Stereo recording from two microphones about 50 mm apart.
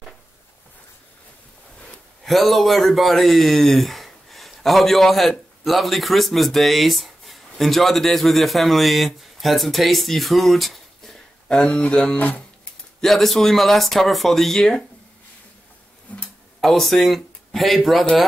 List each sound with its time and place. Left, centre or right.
2.2 s speech: centre
11.8 s music: left
13.0 s speech: centre
16.1 s music: left
16.6 s speech: centre